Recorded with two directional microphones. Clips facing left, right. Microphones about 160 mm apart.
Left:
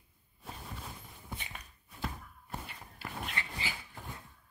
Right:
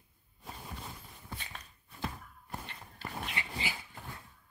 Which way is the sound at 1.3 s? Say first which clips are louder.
Left 1 dB; 15° left (ahead or behind).